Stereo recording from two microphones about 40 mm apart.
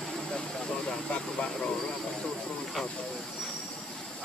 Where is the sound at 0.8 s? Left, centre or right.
Left.